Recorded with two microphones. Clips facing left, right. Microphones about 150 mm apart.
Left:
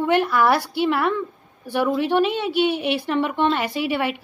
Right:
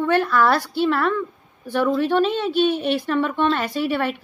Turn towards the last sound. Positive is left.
turn(degrees=15)  # may be behind; listen again after turning